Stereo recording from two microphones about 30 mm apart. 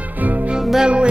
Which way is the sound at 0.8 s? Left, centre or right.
Right.